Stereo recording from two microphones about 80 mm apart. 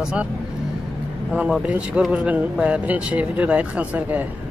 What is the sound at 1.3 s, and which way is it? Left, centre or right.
Speech, centre.